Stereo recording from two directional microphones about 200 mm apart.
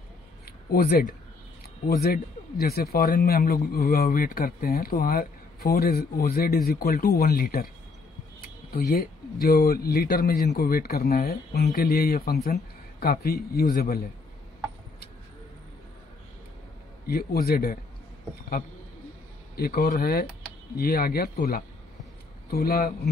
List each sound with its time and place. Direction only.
0.5 s speech: 50° left (ahead or behind)
17.0 s speech: 50° left (ahead or behind)
19.5 s speech: 50° left (ahead or behind)